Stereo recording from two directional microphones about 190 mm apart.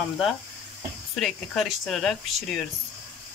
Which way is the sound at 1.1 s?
Centre (ahead or behind).